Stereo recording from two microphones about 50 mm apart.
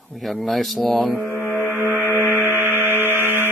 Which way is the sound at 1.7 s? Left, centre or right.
Right.